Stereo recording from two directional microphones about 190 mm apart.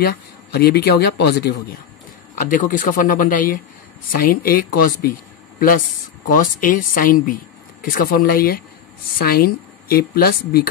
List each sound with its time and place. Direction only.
0.0 s speech: 55° left (ahead or behind)
2.3 s speech: 45° left (ahead or behind)